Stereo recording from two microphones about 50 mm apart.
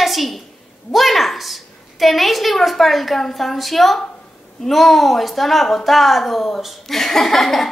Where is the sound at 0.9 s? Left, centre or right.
Centre.